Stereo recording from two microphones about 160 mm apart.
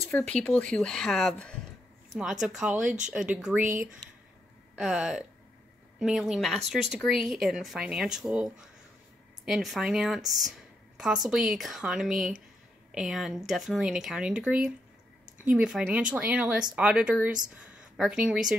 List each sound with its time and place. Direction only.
0.3 s speech: 5° left (ahead or behind)
3.6 s speech: 55° right (ahead or behind)
4.7 s speech: centre (ahead or behind)